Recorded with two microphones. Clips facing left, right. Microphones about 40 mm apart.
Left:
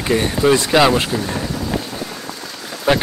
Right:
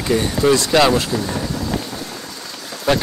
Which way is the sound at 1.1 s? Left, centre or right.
Centre.